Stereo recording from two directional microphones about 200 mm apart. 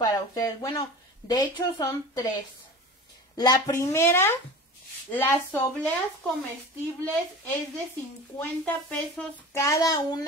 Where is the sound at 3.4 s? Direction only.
15° left (ahead or behind).